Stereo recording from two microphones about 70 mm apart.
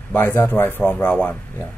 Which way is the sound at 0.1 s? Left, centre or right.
Left.